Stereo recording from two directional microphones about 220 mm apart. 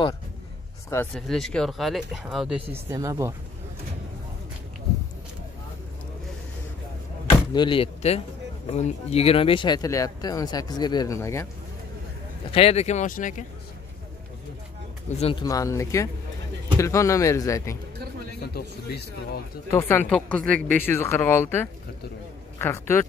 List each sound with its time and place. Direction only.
1.1 s speech: centre (ahead or behind)
2.7 s speech: 15° right (ahead or behind)
7.2 s speech: 20° left (ahead or behind)
12.4 s speech: 25° left (ahead or behind)
15.1 s speech: 25° left (ahead or behind)
15.4 s speech: 15° left (ahead or behind)
18.4 s speech: 45° left (ahead or behind)
19.7 s speech: 10° left (ahead or behind)